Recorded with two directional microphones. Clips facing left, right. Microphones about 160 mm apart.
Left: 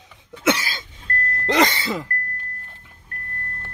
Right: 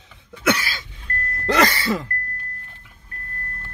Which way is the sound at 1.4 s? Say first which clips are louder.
Right 1 dB; 20° left (ahead or behind).